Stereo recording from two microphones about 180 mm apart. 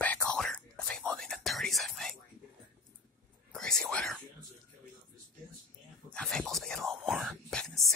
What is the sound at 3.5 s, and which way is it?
Whispering, 5° left (ahead or behind).